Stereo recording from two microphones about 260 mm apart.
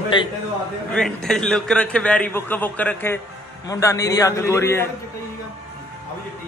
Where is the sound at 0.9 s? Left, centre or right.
Centre.